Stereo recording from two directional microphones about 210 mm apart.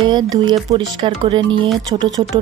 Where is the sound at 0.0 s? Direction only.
20° right (ahead or behind).